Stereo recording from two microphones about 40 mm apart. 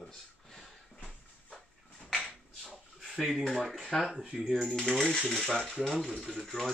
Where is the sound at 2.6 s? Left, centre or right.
Centre.